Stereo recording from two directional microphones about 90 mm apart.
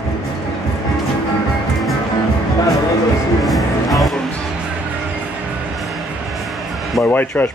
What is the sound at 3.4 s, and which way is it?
Music, centre (ahead or behind).